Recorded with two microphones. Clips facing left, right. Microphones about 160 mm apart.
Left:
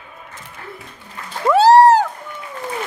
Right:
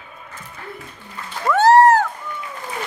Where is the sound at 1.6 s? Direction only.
35° left (ahead or behind).